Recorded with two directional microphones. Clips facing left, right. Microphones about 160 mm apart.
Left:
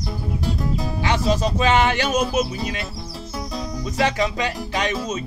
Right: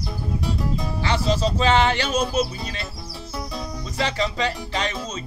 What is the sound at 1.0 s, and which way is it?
Speech, 15° left (ahead or behind).